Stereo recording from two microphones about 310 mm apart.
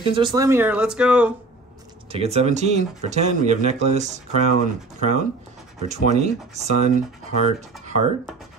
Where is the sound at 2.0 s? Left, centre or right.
Centre.